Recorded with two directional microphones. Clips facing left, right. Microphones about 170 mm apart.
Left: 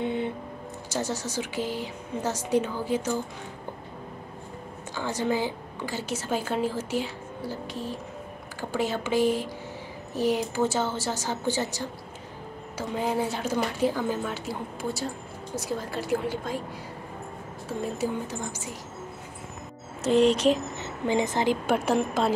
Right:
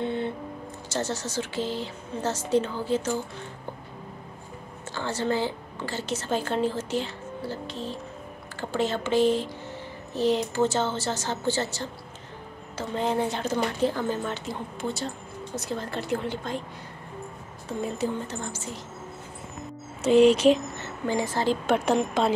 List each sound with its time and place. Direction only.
0.0 s a sound: 15° left (ahead or behind)
0.8 s a woman's voice: 10° left (ahead or behind)
4.9 s a woman's voice: 10° left (ahead or behind)
17.6 s a woman's voice: 5° left (ahead or behind)
20.0 s music: centre (ahead or behind)
20.7 s speech: 15° left (ahead or behind)
21.7 s music: 5° left (ahead or behind)